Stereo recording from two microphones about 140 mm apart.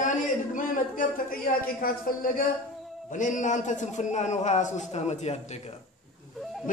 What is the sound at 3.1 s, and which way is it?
A man's voice, 65° left (ahead or behind).